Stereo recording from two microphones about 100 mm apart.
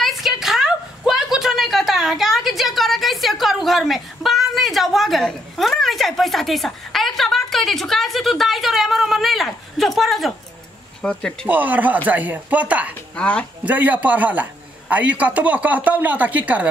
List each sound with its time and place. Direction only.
0.0 s a sound: 5° right (ahead or behind)
11.0 s speech: 10° left (ahead or behind)
11.4 s a man's voice: 15° right (ahead or behind)
13.1 s a woman's voice: 10° left (ahead or behind)
13.7 s a man's voice: 15° right (ahead or behind)